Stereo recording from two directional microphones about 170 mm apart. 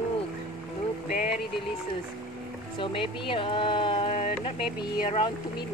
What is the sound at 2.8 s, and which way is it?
Speech, 30° left (ahead or behind).